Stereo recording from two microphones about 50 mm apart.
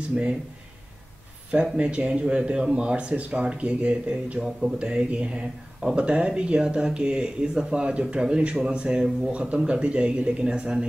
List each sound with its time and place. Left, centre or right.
1.5 s speech: right